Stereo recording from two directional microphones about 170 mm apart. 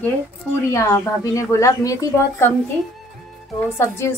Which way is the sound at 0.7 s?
15° left (ahead or behind).